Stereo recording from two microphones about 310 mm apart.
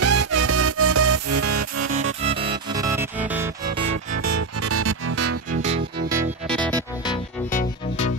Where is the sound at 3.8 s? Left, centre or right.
Right.